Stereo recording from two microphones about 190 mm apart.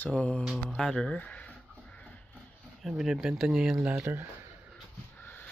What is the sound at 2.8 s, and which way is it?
Speech, centre (ahead or behind).